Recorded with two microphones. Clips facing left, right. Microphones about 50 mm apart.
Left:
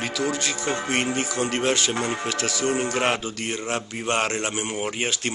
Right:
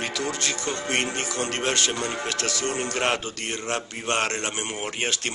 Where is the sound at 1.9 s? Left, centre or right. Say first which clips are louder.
Left 3 dB; left.